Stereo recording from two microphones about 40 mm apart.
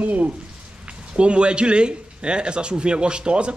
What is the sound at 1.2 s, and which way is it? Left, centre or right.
Speech, right.